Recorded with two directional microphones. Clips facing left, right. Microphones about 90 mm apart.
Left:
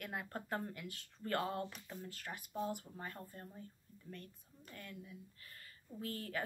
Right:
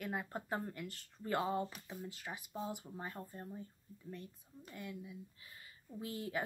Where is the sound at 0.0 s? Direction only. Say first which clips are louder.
Right 3 dB; 5° right (ahead or behind).